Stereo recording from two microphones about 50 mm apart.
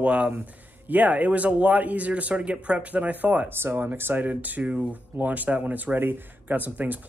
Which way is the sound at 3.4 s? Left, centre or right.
Right.